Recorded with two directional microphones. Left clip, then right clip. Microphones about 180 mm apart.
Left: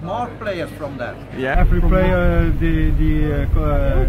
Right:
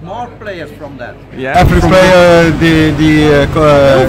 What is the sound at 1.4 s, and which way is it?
Speech, 20° right (ahead or behind).